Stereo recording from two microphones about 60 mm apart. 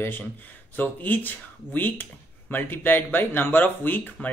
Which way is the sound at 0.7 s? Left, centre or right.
Left.